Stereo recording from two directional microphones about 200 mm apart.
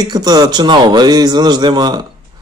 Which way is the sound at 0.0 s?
20° right (ahead or behind).